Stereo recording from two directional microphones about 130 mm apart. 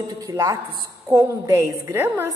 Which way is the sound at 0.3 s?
30° right (ahead or behind).